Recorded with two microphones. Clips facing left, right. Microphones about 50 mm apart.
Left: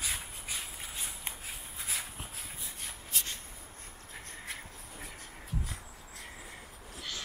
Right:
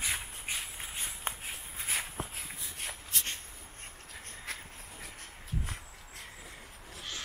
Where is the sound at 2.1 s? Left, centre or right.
Right.